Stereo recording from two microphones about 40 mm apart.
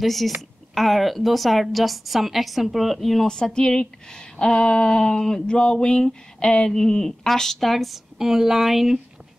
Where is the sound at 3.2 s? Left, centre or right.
Centre.